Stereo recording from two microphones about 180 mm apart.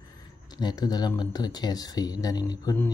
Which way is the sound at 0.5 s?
20° left (ahead or behind).